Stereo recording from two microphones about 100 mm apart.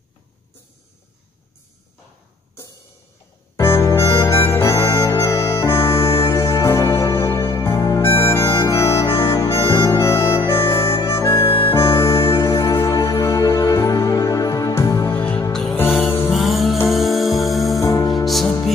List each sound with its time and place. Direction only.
3.5 s music: 30° left (ahead or behind)
15.1 s music: 15° left (ahead or behind)
16.3 s music: centre (ahead or behind)
17.7 s music: 35° left (ahead or behind)
18.2 s music: centre (ahead or behind)